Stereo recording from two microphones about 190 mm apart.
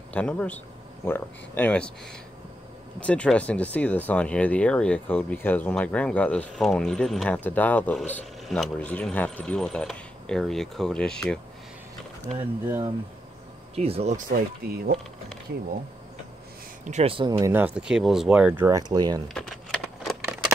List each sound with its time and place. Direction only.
0.1 s speech: 5° left (ahead or behind)
3.0 s speech: 5° left (ahead or behind)
12.6 s speech: 15° right (ahead or behind)
13.7 s speech: 30° right (ahead or behind)
14.3 s speech: 55° right (ahead or behind)
16.8 s speech: 35° right (ahead or behind); by 18.7 s 5° right (ahead or behind)
18.7 s speech: 20° right (ahead or behind)
19.2 s typewriter: centre (ahead or behind)